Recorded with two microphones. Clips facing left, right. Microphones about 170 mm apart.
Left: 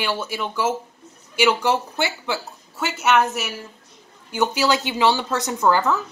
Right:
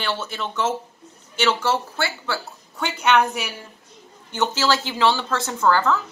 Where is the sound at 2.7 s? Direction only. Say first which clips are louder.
Even; 5° left (ahead or behind).